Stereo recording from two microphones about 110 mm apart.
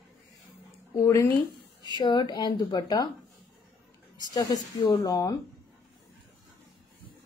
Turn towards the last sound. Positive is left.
turn(degrees=30)  # may be behind; listen again after turning